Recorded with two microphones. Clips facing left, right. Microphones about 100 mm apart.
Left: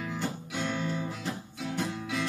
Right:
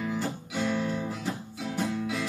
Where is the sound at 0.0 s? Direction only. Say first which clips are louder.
Right 3 dB; 5° right (ahead or behind).